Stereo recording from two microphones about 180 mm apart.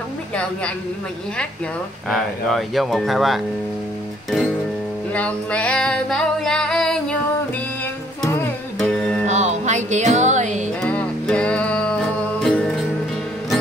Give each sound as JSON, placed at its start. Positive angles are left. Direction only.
{"t": 2.0, "sound": "speech", "side_deg": 0}
{"t": 5.1, "sound": "female singing", "side_deg": 5}
{"t": 8.7, "sound": "music", "side_deg": 5}
{"t": 9.2, "sound": "music", "side_deg": -40}
{"t": 10.8, "sound": "music", "side_deg": 5}